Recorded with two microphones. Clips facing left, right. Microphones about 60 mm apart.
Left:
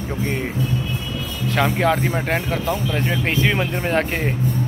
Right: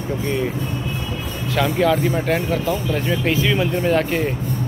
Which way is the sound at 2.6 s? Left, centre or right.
Left.